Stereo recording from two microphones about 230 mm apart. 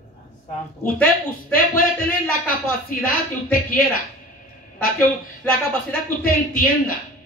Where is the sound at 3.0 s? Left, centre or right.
Left.